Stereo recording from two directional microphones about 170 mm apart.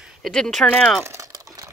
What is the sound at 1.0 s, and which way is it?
Crumpling, 15° right (ahead or behind).